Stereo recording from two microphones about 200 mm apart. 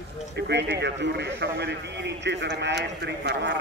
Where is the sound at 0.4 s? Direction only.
60° right (ahead or behind).